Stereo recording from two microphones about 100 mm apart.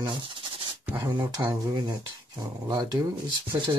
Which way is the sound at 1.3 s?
45° right (ahead or behind).